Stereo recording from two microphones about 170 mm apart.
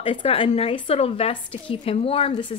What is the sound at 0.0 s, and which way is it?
Speech, 35° left (ahead or behind).